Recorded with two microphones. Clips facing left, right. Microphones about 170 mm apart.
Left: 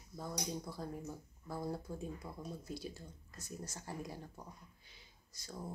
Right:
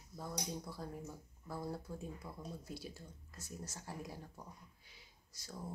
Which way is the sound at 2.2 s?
20° left (ahead or behind).